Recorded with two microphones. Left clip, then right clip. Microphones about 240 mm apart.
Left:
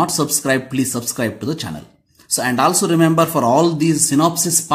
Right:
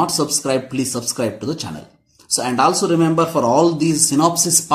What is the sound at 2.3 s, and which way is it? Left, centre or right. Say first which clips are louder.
Speech: even; left.